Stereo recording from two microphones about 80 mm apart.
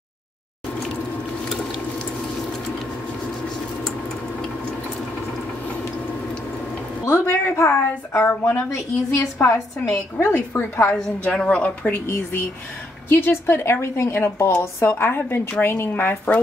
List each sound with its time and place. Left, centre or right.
7.1 s a sound: left
8.2 s a woman's voice: centre
8.6 s a woman's voice: left
11.0 s a woman's voice: centre
12.1 s a woman's voice: left